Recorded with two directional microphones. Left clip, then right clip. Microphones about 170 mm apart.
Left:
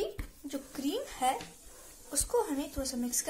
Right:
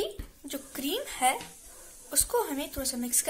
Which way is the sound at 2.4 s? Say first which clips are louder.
Left 1 dB; 5° right (ahead or behind).